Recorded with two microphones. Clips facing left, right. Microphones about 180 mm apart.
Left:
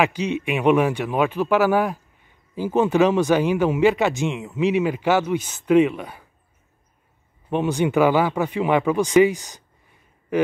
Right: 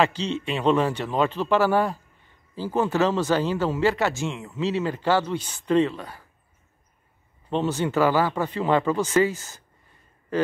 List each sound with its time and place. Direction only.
0.0 s speech: 10° left (ahead or behind)
7.4 s speech: 15° left (ahead or behind)